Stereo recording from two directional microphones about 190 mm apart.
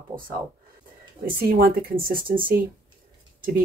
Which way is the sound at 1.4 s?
50° right (ahead or behind).